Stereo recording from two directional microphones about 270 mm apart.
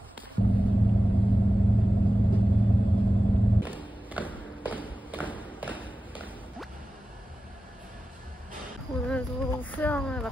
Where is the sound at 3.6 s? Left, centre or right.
Centre.